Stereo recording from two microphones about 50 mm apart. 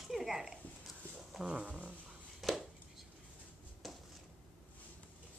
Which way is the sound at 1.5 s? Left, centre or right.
Right.